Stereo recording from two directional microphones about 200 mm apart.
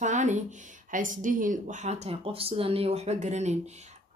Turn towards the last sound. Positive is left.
turn(degrees=-35)  # may be behind; listen again after turning